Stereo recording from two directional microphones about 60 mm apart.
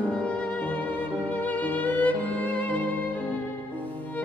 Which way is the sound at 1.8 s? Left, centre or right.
Left.